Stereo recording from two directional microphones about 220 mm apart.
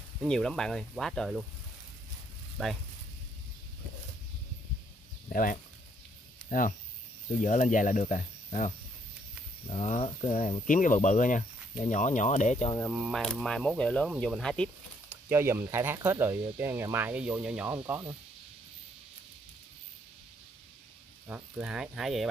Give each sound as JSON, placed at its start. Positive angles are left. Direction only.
{"t": 0.2, "sound": "speech", "side_deg": 0}
{"t": 2.6, "sound": "speech", "side_deg": 0}
{"t": 5.3, "sound": "speech", "side_deg": 40}
{"t": 7.4, "sound": "speech", "side_deg": 35}
{"t": 12.9, "sound": "speech", "side_deg": -5}
{"t": 21.3, "sound": "speech", "side_deg": -5}